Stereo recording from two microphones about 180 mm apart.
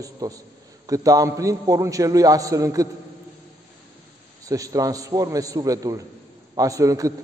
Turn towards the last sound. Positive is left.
turn(degrees=-20)  # may be behind; listen again after turning